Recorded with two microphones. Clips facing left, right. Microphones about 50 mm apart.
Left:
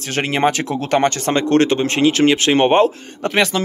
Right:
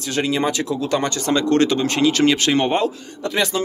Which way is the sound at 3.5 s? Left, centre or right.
Left.